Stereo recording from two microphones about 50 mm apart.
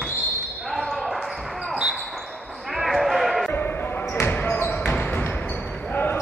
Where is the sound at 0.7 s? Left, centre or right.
Centre.